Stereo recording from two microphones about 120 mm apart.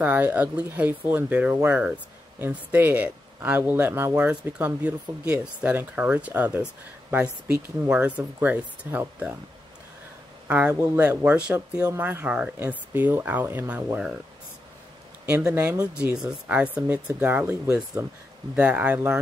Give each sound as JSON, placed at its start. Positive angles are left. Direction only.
{"t": 0.0, "sound": "speech", "side_deg": -15}
{"t": 10.7, "sound": "speech", "side_deg": -20}
{"t": 15.2, "sound": "speech", "side_deg": -10}
{"t": 15.5, "sound": "speech", "side_deg": -25}
{"t": 16.0, "sound": "speech", "side_deg": -10}